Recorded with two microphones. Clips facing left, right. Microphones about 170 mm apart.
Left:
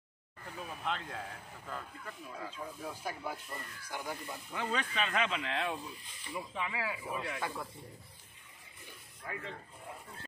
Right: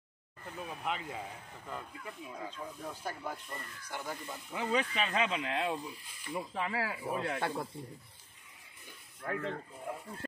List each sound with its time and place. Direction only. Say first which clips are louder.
0.5 s speech: right 1 dB; 5° right (ahead or behind)
2.5 s speech: even; 5° left (ahead or behind)
4.5 s speech: right 4 dB; 15° right (ahead or behind)
6.5 s speech: right 2 dB; 40° right (ahead or behind)
9.2 s speech: right 7 dB; 60° right (ahead or behind)